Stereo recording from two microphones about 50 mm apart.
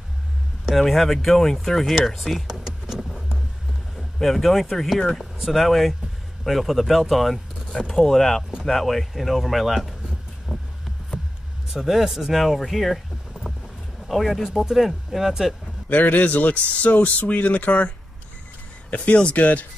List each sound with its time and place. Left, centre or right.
0.7 s speech: centre
3.9 s speech: centre
10.5 s a sound: centre
11.7 s speech: centre
15.9 s speech: left
19.0 s speech: left